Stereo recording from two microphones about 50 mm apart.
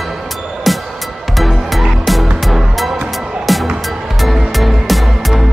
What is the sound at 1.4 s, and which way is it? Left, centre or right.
Music, centre.